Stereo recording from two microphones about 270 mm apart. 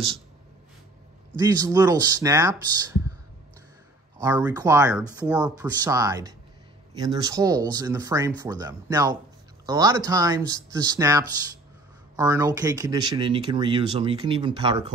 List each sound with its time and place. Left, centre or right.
1.4 s speech: centre
4.2 s speech: centre